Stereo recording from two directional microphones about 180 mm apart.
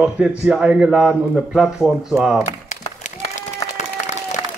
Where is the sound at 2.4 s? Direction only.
40° left (ahead or behind).